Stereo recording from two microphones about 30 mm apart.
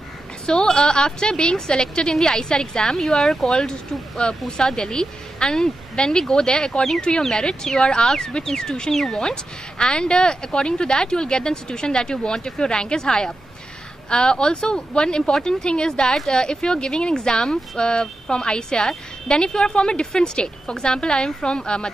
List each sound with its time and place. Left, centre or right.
0.5 s speech: left
4.5 s speech: left
9.2 s a woman's voice: left